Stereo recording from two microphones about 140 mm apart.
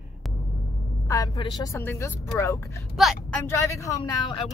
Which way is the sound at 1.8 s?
15° left (ahead or behind).